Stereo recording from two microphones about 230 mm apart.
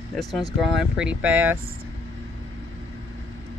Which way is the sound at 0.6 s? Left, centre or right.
Centre.